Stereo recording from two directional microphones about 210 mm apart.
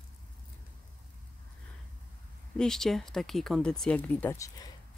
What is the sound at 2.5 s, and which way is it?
Speech, centre (ahead or behind).